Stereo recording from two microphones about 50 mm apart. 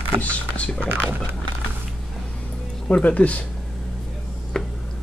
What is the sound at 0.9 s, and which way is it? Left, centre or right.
Speech, right.